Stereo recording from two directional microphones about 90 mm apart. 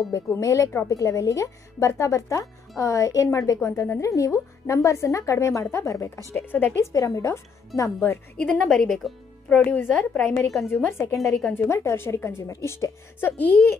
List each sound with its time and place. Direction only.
0.1 s a woman's voice: 35° left (ahead or behind)
6.3 s a woman's voice: 20° left (ahead or behind)
6.9 s a woman's voice: 40° left (ahead or behind)
8.0 s a woman's voice: 15° left (ahead or behind)
8.5 s speech: 5° left (ahead or behind)
9.7 s a woman's voice: 15° left (ahead or behind)
10.7 s a woman's voice: 25° left (ahead or behind)
13.2 s a woman's voice: 20° left (ahead or behind)